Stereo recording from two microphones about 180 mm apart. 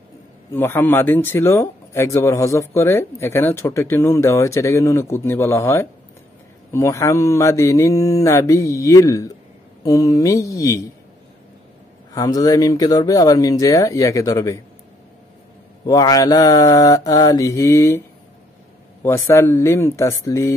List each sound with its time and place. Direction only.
0.5 s speech: 10° left (ahead or behind)
12.1 s speech: 20° left (ahead or behind)
15.8 s speech: 20° left (ahead or behind)
19.0 s speech: 15° left (ahead or behind)